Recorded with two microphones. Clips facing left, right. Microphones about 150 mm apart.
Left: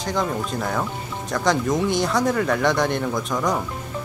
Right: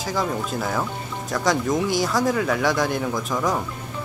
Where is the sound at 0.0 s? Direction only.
5° right (ahead or behind).